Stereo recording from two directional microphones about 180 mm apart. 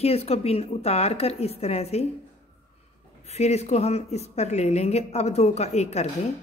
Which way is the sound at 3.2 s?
35° left (ahead or behind).